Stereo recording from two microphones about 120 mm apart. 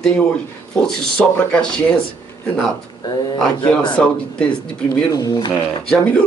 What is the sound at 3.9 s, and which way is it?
Speech, 10° left (ahead or behind).